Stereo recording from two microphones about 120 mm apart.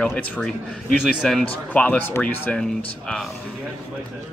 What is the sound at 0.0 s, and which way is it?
Speech, 10° left (ahead or behind).